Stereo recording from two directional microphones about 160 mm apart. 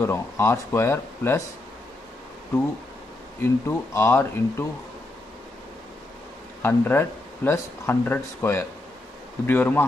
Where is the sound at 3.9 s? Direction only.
15° left (ahead or behind).